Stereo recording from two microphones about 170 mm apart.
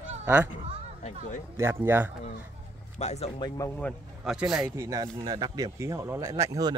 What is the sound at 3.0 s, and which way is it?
Speech, 40° left (ahead or behind).